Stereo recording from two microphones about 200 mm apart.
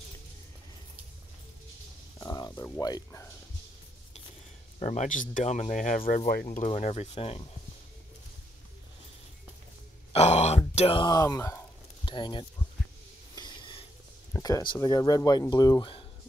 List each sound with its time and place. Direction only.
2.1 s a sound: 15° left (ahead or behind)
2.8 s speech: 15° left (ahead or behind)
4.7 s speech: 35° left (ahead or behind)
6.4 s speech: 30° left (ahead or behind)
10.1 s groan: 35° left (ahead or behind)
10.7 s speech: 30° left (ahead or behind)
13.3 s a sound: 20° left (ahead or behind)
14.3 s speech: 15° left (ahead or behind)